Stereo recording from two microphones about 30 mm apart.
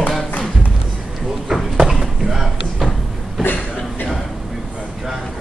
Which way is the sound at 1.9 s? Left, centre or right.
Centre.